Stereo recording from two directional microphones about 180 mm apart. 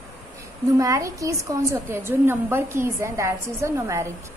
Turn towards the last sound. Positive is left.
turn(degrees=-15)  # may be behind; listen again after turning